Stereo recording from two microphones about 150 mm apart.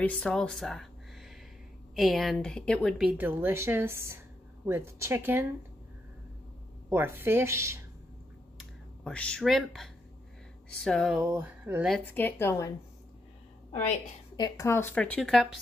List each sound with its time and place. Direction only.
0.0 s a woman's voice: 5° left (ahead or behind)
3.1 s a woman's voice: 15° right (ahead or behind)
6.9 s a woman's voice: 15° right (ahead or behind)
8.5 s a woman's voice: 5° left (ahead or behind)
11.2 s a woman's voice: 15° right (ahead or behind)
12.1 s speech: 15° left (ahead or behind)
14.3 s speech: 25° left (ahead or behind); by 15.6 s 5° left (ahead or behind)